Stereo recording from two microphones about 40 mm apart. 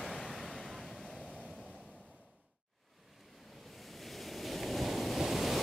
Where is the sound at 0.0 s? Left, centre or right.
Centre.